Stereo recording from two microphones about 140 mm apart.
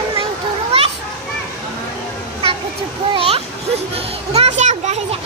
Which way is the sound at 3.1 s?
45° right (ahead or behind).